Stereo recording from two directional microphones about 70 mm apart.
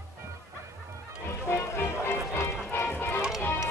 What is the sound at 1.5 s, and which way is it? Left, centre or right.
Music, left.